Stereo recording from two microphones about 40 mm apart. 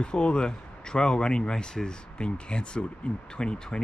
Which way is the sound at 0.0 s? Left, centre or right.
Left.